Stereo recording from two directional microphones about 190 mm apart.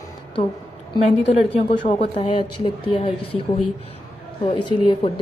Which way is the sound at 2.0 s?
30° left (ahead or behind).